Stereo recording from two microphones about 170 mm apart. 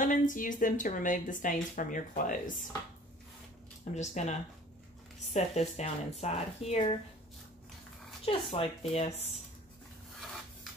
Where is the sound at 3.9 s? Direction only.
45° left (ahead or behind).